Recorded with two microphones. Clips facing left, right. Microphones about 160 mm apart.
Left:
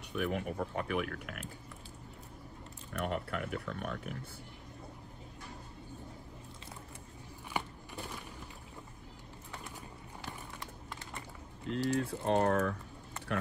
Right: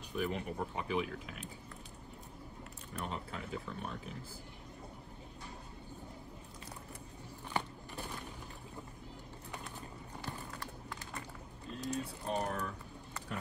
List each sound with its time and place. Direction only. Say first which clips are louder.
0.1 s speech: left 2 dB; 65° left (ahead or behind)
2.9 s speech: left 6 dB; 70° left (ahead or behind)
11.6 s speech: left 7 dB; 75° left (ahead or behind)